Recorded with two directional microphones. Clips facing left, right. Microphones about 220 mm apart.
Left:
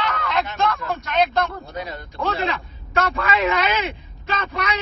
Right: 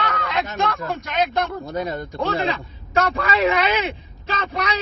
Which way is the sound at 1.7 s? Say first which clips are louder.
Right 6 dB; 50° right (ahead or behind).